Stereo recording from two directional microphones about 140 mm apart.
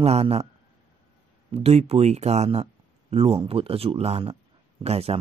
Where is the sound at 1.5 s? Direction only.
45° right (ahead or behind).